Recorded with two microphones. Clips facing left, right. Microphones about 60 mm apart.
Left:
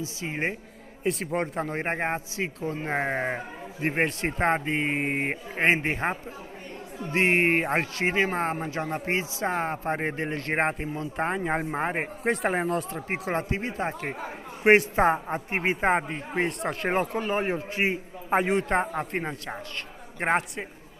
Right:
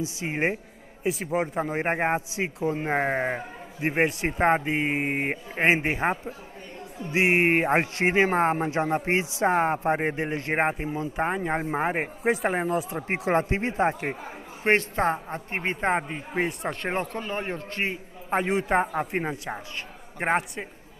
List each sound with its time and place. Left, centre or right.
0.2 s speech: centre
1.0 s speech: centre
12.9 s speech: right
14.6 s a man's voice: centre